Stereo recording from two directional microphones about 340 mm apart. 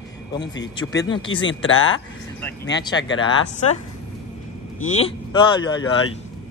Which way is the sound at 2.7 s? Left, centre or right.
Centre.